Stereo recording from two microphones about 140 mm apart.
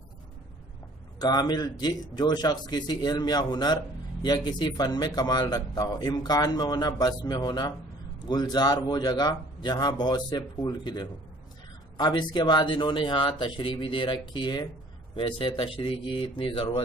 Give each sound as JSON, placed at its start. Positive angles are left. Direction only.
{"t": 1.2, "sound": "a man's voice", "side_deg": 30}